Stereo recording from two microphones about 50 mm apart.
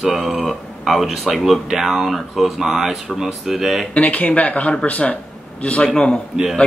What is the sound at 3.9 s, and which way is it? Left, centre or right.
A man's voice, left.